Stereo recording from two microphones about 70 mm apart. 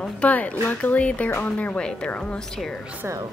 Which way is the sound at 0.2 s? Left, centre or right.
Left.